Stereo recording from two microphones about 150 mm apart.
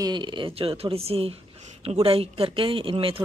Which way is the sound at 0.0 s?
30° right (ahead or behind).